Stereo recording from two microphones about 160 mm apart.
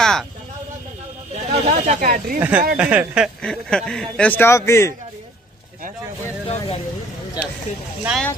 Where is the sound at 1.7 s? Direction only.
50° right (ahead or behind).